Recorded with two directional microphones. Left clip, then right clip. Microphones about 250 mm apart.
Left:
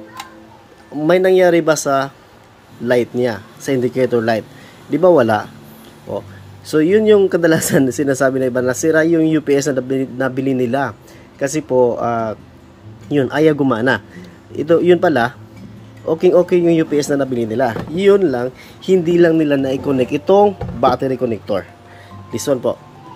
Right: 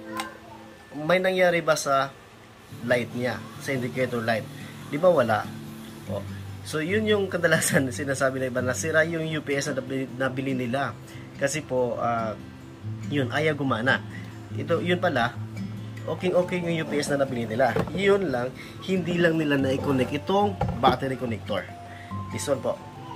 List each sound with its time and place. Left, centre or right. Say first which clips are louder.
1.0 s speech: left 10 dB; left
6.7 s speech: left 13 dB; left